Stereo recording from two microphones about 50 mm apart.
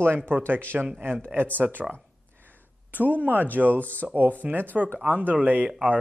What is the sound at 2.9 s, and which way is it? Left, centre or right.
Speech, right.